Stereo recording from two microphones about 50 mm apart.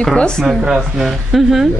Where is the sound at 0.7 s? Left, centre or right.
Centre.